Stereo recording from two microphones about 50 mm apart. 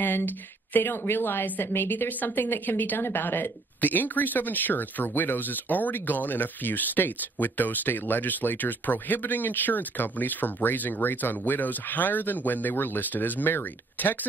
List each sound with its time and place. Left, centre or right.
0.0 s a woman's voice: left